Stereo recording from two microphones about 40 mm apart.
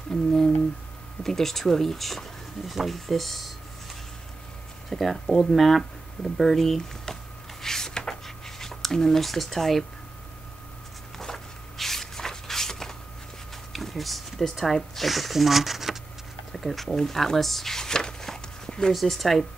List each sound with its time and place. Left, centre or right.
0.1 s speech: centre
4.8 s speech: centre
7.1 s a sound: centre
7.6 s writing: centre
11.1 s spray: centre
13.7 s a sound: centre
14.5 s speech: centre
16.5 s a sound: centre
18.9 s speech: centre